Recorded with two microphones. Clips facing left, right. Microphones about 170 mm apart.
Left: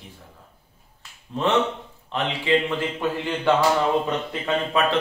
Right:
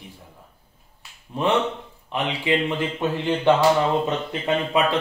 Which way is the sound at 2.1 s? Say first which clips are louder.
Right 1 dB; 15° right (ahead or behind).